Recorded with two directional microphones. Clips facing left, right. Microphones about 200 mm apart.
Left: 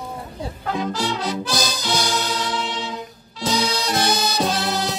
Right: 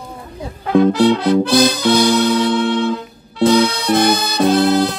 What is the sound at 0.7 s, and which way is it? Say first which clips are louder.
Music: right 13 dB; 60° right (ahead or behind).